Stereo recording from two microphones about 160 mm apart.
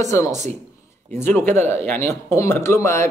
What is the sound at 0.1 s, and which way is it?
Speech, 15° left (ahead or behind).